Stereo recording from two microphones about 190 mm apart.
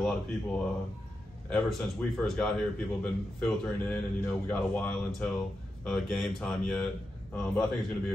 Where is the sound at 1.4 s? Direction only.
5° left (ahead or behind).